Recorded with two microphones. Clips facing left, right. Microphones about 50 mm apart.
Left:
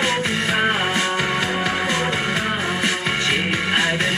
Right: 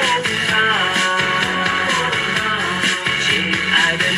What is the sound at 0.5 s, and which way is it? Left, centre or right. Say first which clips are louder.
Music: right 4 dB; right.